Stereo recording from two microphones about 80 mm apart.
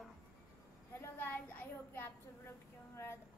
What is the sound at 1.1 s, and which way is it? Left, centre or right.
A child's voice, left.